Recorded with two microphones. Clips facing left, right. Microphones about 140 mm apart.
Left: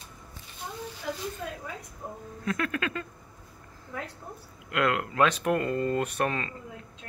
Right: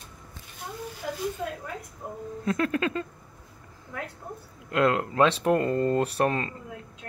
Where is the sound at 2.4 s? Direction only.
30° right (ahead or behind).